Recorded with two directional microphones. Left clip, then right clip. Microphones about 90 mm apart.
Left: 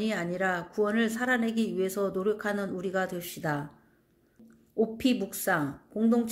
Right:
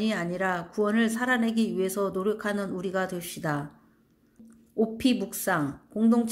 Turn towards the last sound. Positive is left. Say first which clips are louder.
# right 2 dB
turn(degrees=-20)  # may be behind; listen again after turning